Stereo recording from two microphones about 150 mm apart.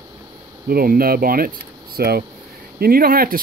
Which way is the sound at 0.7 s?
75° right (ahead or behind).